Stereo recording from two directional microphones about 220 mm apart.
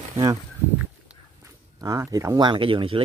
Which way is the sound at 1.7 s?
15° right (ahead or behind).